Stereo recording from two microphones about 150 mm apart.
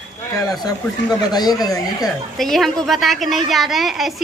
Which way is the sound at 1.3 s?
25° left (ahead or behind).